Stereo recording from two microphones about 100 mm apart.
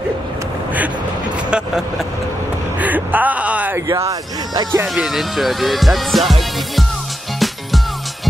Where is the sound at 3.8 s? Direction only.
35° right (ahead or behind).